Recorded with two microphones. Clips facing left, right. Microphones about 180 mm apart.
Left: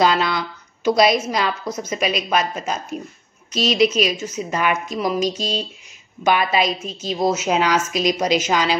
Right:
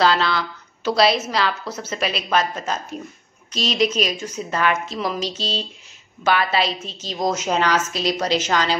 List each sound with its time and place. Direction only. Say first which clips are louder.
0.0 s a woman's voice: left 1 dB; 15° left (ahead or behind)